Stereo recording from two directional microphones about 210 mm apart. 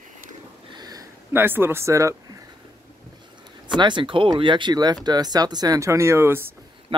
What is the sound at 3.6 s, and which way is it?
Speech, 20° right (ahead or behind).